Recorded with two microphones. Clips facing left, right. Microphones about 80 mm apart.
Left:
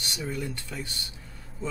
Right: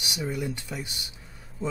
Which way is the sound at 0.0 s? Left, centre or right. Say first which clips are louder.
Right 2 dB; centre.